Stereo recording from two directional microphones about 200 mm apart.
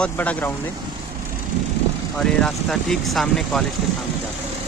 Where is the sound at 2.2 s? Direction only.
5° left (ahead or behind).